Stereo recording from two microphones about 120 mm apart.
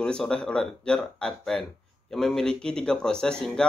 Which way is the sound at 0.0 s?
5° left (ahead or behind).